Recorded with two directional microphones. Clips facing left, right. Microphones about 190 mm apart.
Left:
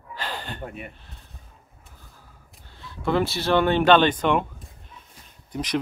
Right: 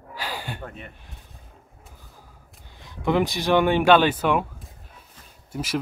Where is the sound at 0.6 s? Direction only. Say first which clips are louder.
Left 2 dB; 10° left (ahead or behind).